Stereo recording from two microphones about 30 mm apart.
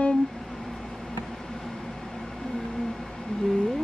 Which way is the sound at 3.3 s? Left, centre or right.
Left.